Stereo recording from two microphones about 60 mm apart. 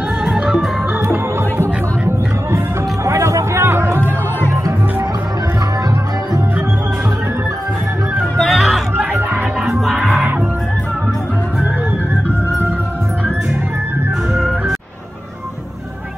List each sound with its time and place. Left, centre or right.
1.6 s music: right
3.1 s a sound: right
8.4 s music: centre
8.9 s music: right
9.8 s music: centre
14.3 s music: centre